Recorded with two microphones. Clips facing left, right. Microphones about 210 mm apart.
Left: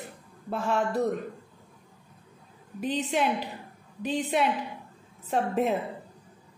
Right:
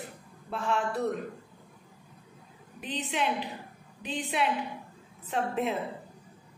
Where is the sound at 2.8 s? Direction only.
40° left (ahead or behind).